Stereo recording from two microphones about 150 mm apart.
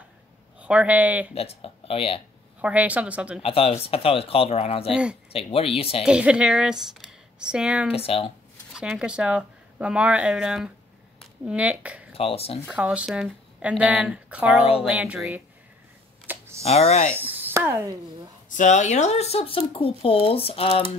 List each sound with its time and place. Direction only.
0.6 s a man's voice: 10° right (ahead or behind)
1.3 s speech: 40° left (ahead or behind)
2.6 s speech: 10° right (ahead or behind)
3.4 s speech: 40° left (ahead or behind)
6.0 s speech: 5° right (ahead or behind)
7.9 s speech: 40° left (ahead or behind)
8.7 s speech: 5° right (ahead or behind)
12.1 s speech: 40° left (ahead or behind)
12.6 s speech: 10° right (ahead or behind)
16.3 s a sound: 15° right (ahead or behind)
16.6 s speech: 45° left (ahead or behind)
17.2 s a sound: 10° right (ahead or behind)
18.5 s speech: 55° left (ahead or behind)